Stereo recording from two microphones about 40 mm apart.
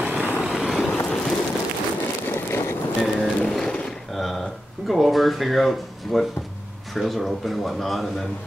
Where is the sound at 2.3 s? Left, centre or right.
Left.